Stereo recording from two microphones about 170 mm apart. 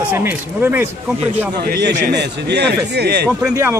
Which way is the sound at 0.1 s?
10° right (ahead or behind).